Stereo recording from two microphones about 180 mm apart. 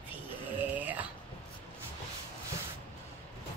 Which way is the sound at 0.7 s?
10° right (ahead or behind).